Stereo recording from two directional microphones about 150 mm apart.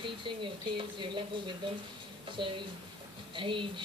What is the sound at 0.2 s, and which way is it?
Speech, 35° right (ahead or behind).